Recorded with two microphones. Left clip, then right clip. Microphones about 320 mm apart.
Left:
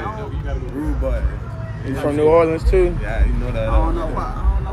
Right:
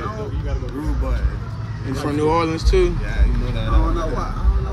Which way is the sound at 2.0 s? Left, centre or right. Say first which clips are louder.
Left 5 dB; centre.